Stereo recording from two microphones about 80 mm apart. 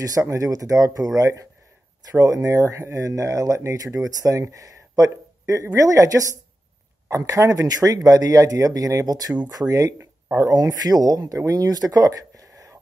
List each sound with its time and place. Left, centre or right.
0.0 s speech: right